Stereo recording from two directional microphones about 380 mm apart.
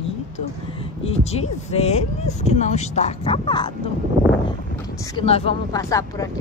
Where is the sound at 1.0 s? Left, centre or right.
Centre.